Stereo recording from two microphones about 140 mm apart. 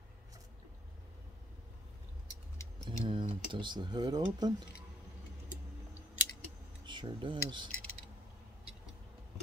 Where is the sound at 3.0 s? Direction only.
40° right (ahead or behind).